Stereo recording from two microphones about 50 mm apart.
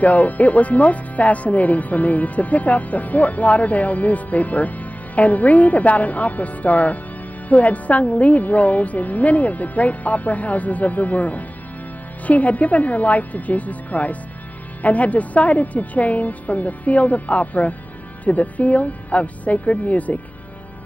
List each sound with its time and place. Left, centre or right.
0.0 s a woman's voice: left